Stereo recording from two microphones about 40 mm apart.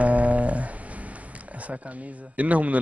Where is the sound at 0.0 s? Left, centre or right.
Right.